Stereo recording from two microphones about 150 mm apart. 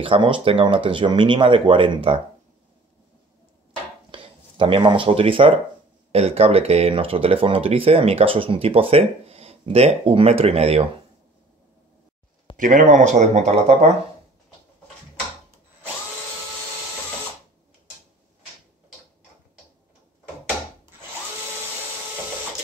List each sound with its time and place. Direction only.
0.0 s speech: 35° right (ahead or behind)
4.1 s speech: 35° right (ahead or behind)
12.5 s speech: 60° right (ahead or behind)